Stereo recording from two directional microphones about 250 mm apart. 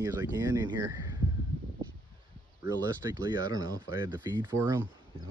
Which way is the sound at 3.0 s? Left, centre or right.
Centre.